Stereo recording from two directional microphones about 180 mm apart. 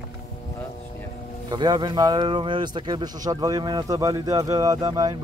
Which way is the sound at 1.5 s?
25° right (ahead or behind).